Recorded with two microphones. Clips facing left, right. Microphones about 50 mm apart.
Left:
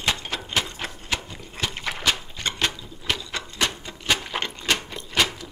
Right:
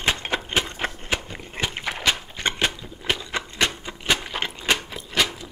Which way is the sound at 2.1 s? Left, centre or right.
Right.